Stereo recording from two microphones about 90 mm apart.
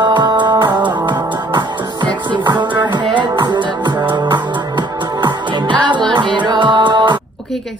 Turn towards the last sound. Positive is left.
turn(degrees=-60)  # may be behind; listen again after turning